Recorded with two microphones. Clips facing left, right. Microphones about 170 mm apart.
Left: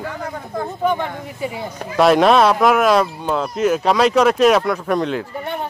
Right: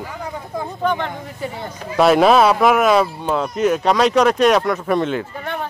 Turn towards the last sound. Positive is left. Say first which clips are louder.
# right 1 dB
turn(degrees=0)  # may be behind; listen again after turning